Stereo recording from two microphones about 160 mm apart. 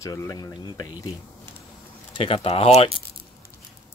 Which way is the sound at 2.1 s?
35° left (ahead or behind).